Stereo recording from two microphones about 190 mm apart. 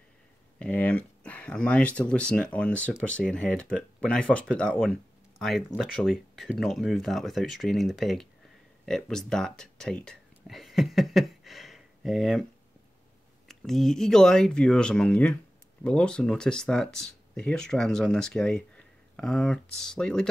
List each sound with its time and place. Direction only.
0.6 s speech: 5° left (ahead or behind)
13.5 s speech: centre (ahead or behind)